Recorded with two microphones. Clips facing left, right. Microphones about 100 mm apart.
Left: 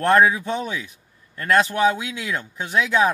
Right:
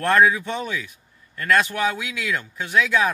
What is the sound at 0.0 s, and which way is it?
A man's voice, 25° left (ahead or behind).